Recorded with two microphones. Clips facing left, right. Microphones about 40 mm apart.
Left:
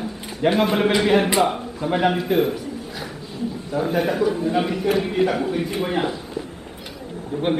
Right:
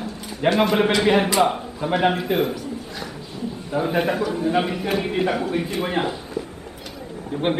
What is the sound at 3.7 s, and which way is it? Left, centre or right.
A man's voice, centre.